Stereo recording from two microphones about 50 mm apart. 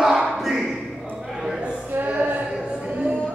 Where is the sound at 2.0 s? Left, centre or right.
Right.